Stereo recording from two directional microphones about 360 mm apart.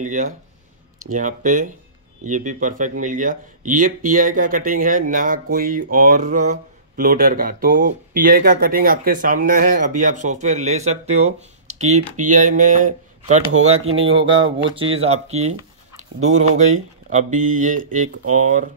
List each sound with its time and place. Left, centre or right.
0.0 s speech: right